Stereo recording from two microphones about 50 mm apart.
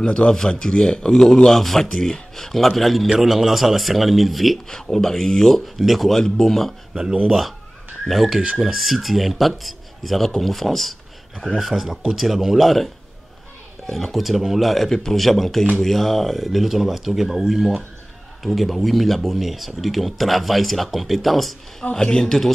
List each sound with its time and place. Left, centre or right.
0.0 s speech: left
0.3 s speech: centre
6.9 s speech: centre
13.9 s speech: centre